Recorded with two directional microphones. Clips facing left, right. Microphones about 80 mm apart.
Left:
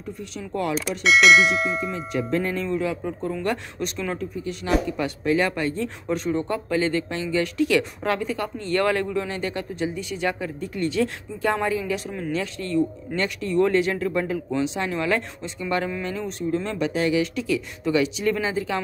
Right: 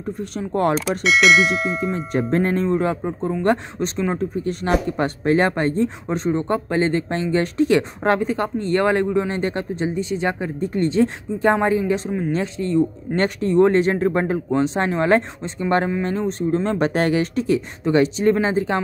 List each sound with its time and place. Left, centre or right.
0.7 s speech: centre
1.9 s speech: right
4.8 s speech: right
13.1 s speech: right
16.7 s speech: right